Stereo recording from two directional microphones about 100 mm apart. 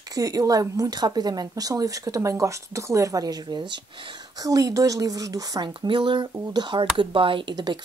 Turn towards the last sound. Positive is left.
turn(degrees=-45)  # may be behind; listen again after turning